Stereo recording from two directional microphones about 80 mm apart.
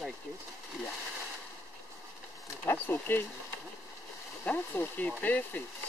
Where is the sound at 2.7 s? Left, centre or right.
Left.